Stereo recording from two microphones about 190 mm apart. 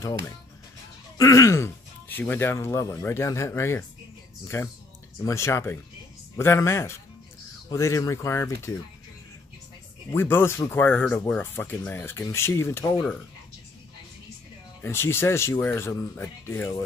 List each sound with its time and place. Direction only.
1.1 s speech: 15° left (ahead or behind)
5.2 s speech: 15° left (ahead or behind)
10.1 s speech: 10° left (ahead or behind)
14.8 s speech: 10° left (ahead or behind)